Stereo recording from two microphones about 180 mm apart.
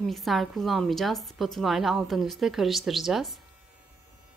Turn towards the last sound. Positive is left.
turn(degrees=0)  # may be behind; listen again after turning